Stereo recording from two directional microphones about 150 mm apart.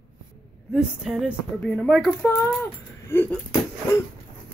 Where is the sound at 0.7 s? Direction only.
5° right (ahead or behind).